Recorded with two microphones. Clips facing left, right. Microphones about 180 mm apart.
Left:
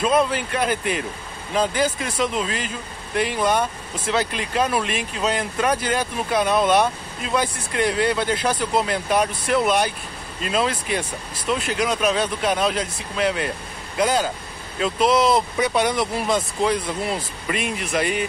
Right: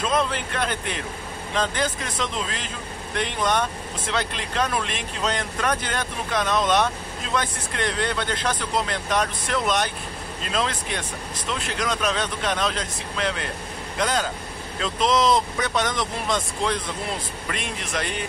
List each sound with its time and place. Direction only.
0.0 s speech: 10° left (ahead or behind)